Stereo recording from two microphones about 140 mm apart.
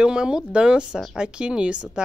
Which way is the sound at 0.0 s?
5° right (ahead or behind).